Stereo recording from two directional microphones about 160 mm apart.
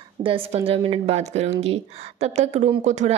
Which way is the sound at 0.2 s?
35° right (ahead or behind).